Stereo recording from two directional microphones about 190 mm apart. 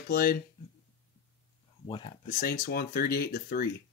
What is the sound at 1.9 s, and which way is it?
Speech, 25° left (ahead or behind).